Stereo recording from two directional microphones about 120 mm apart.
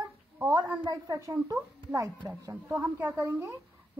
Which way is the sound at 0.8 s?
30° right (ahead or behind).